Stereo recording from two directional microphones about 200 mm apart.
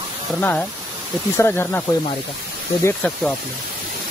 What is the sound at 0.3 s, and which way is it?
Speech, 5° left (ahead or behind).